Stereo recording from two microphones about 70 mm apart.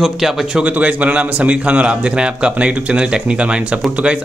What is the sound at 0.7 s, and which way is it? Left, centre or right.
A man's voice, right.